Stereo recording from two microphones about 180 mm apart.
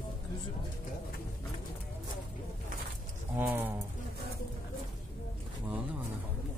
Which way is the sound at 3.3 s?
10° right (ahead or behind).